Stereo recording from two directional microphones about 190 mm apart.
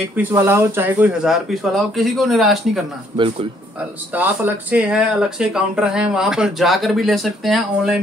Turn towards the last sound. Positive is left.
turn(degrees=0)  # may be behind; listen again after turning